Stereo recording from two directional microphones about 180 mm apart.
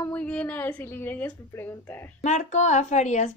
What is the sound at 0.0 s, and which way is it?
A woman's voice, 5° left (ahead or behind).